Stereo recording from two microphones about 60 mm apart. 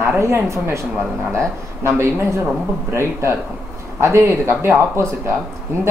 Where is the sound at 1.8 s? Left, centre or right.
Right.